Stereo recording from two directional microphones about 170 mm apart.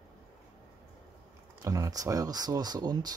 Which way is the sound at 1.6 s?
20° right (ahead or behind).